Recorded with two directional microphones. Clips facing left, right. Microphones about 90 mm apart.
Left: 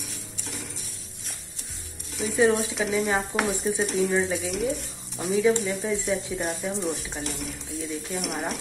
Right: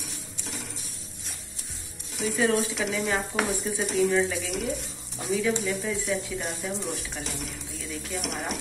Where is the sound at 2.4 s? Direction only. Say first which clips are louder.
Even; 15° left (ahead or behind).